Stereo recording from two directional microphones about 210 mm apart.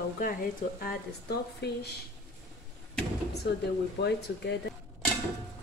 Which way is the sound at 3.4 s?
50° left (ahead or behind).